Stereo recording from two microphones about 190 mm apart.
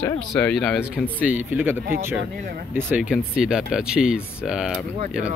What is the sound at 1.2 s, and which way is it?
Speech, 10° right (ahead or behind).